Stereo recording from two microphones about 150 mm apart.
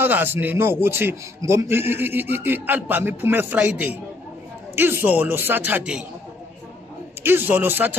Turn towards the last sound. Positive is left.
turn(degrees=-10)  # may be behind; listen again after turning